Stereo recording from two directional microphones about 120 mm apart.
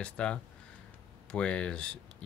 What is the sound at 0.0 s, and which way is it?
Speech, 10° left (ahead or behind).